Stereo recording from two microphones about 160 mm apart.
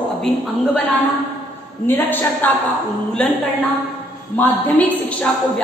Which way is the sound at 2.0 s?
10° left (ahead or behind).